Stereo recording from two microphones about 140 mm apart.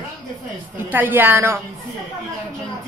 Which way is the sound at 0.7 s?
15° right (ahead or behind).